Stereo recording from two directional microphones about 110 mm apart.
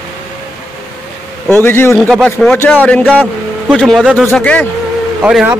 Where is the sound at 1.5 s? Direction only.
20° left (ahead or behind).